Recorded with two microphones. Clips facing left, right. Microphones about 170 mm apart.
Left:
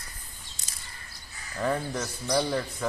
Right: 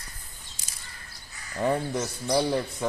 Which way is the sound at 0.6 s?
10° right (ahead or behind).